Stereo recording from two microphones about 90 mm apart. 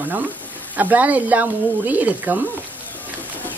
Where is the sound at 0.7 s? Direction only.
20° right (ahead or behind).